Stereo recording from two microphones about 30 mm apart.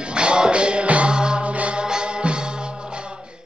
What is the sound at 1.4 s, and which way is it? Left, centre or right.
Music, right.